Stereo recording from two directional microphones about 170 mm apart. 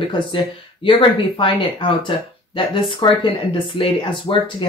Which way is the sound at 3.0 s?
30° left (ahead or behind).